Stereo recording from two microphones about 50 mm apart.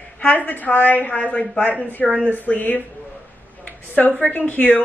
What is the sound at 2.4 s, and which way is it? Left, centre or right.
Speech, left.